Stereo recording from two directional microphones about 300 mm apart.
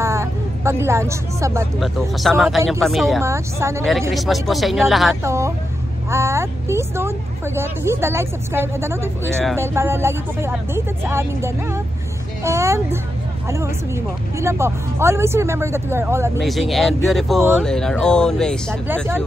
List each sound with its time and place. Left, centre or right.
0.0 s speech: centre
14.4 s speech: centre